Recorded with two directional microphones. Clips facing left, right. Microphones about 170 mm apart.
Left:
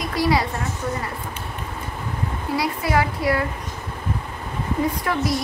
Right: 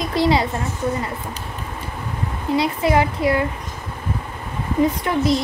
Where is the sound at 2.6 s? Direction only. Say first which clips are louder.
Right 4 dB; 20° right (ahead or behind).